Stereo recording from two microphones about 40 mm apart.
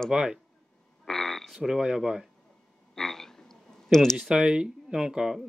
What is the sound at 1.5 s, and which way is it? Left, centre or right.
Speech, centre.